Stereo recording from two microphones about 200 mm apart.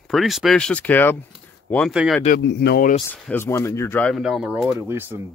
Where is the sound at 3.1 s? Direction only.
10° left (ahead or behind).